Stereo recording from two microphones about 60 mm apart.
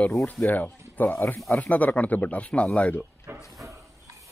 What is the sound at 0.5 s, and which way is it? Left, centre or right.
Speech, left.